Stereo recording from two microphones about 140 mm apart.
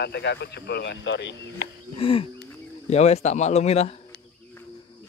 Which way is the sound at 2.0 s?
40° left (ahead or behind).